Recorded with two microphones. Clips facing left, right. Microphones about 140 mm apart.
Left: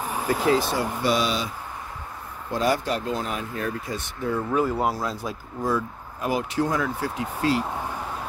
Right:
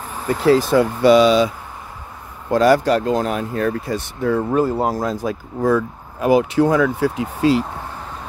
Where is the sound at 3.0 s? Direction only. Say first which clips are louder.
Right 9 dB; 55° right (ahead or behind).